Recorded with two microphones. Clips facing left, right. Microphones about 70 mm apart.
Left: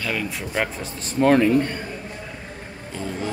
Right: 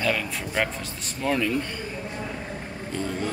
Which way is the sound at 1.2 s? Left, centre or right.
Left.